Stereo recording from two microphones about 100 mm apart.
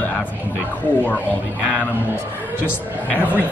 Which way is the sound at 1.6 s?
15° right (ahead or behind).